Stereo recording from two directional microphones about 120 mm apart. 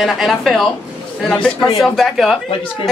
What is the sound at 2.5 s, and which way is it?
Speech, 45° left (ahead or behind).